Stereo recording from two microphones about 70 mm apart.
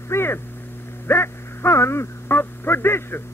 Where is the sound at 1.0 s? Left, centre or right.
Left.